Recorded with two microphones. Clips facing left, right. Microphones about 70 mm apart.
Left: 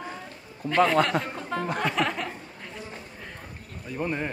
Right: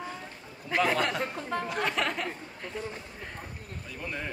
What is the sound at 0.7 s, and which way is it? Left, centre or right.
Speech, left.